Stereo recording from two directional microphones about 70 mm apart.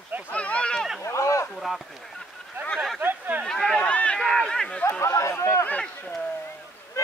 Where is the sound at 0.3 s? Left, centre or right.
Centre.